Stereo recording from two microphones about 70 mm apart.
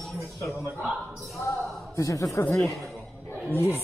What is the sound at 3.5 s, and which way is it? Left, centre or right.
Speech, left.